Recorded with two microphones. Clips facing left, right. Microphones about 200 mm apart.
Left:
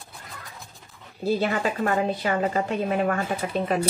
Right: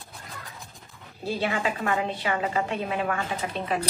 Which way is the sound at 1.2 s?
40° left (ahead or behind).